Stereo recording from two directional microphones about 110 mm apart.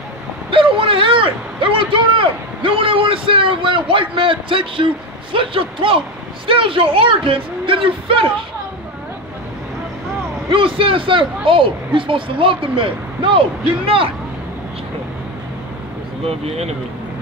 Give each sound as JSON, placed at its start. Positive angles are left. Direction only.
{"t": 0.5, "sound": "speech", "side_deg": -50}
{"t": 10.5, "sound": "speech", "side_deg": -55}
{"t": 16.3, "sound": "speech", "side_deg": -70}